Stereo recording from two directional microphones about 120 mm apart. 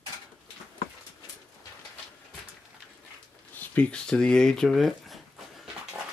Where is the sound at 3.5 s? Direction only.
10° left (ahead or behind).